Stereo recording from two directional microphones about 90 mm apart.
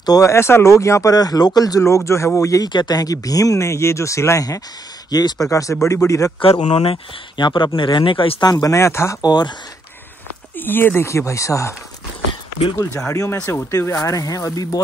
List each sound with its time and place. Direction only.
0.0 s speech: 45° left (ahead or behind)
0.3 s speech: 30° left (ahead or behind)
1.1 s speech: 45° left (ahead or behind)
2.7 s speech: 50° left (ahead or behind)
6.8 s speech: 90° left
7.4 s speech: 60° left (ahead or behind)
8.5 s speech: 45° left (ahead or behind)
8.7 s speech: 30° left (ahead or behind)
9.2 s speech: 50° left (ahead or behind)
10.5 s speech: 20° left (ahead or behind)
12.7 s speech: 30° left (ahead or behind)